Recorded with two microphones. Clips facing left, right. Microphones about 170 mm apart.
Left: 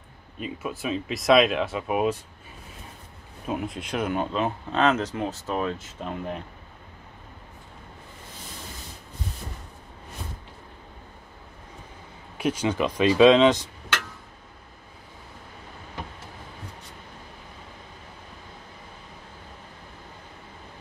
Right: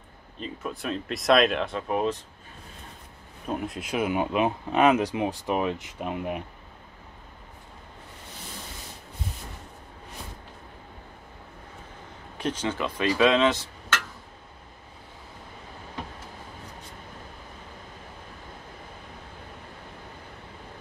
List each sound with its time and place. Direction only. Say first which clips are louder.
0.4 s speech: left 2 dB; 5° left (ahead or behind)
3.4 s speech: left 1 dB; centre (ahead or behind)
12.4 s speech: left 4 dB; 10° left (ahead or behind)